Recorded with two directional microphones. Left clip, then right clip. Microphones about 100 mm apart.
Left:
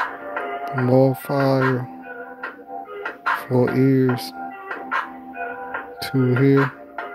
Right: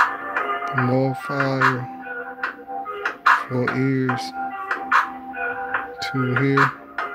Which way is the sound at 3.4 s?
30° left (ahead or behind).